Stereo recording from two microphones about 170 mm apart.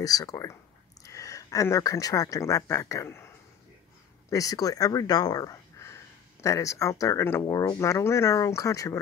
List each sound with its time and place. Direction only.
0.0 s speech: 20° left (ahead or behind)
4.3 s speech: 20° left (ahead or behind)